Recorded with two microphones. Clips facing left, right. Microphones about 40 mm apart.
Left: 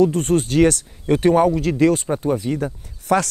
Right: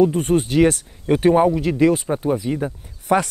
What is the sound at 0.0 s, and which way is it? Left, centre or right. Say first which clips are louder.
Speech: even; centre.